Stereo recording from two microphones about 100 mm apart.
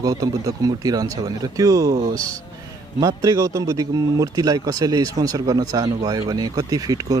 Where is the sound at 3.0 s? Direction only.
35° right (ahead or behind).